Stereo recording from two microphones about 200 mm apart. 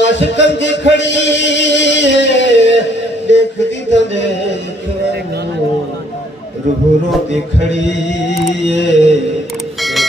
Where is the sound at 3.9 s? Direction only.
65° left (ahead or behind).